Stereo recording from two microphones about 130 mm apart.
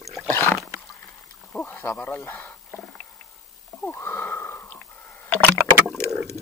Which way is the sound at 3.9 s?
20° left (ahead or behind).